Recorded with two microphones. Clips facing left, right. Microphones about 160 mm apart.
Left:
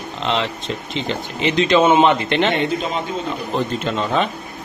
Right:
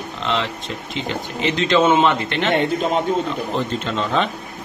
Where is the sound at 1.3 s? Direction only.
15° left (ahead or behind).